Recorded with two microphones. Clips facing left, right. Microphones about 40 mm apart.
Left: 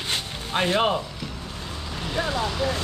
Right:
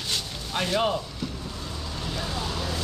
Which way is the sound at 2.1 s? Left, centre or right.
Left.